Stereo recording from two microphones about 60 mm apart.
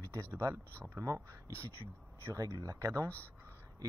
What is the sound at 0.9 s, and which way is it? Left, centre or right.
Speech, right.